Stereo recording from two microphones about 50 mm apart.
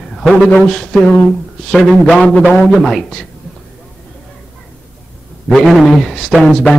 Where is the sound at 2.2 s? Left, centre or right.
Left.